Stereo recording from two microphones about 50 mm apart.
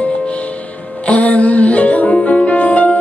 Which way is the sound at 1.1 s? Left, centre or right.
Left.